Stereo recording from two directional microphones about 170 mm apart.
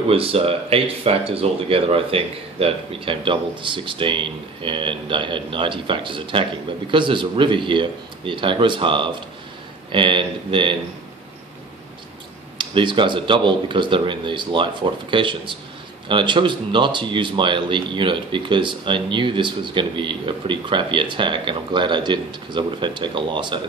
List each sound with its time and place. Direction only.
0.1 s speech: 35° right (ahead or behind)
12.5 s speech: 30° right (ahead or behind)